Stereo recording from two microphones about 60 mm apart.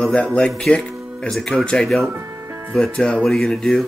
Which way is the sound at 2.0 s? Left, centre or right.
Right.